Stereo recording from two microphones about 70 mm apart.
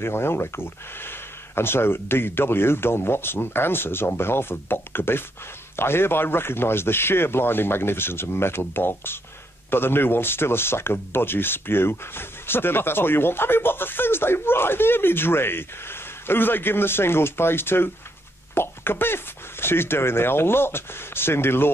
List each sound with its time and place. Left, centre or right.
0.0 s speech: left